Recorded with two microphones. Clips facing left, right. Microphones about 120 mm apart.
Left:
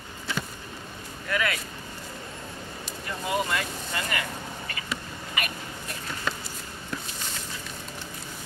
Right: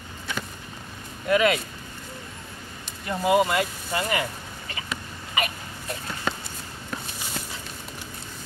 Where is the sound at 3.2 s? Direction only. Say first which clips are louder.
Right 7 dB; 20° right (ahead or behind).